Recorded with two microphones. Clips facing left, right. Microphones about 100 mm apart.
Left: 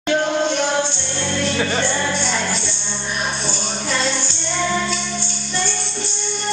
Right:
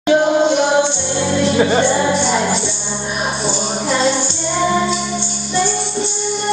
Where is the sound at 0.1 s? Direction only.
15° right (ahead or behind).